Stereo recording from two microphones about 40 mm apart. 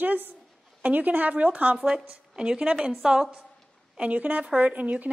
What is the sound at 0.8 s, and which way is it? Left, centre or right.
Speech, right.